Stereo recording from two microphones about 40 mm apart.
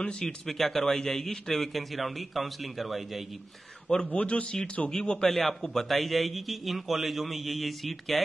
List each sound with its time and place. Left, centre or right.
0.2 s a man's voice: centre
4.1 s a man's voice: left
5.0 s a man's voice: centre
5.3 s a man's voice: centre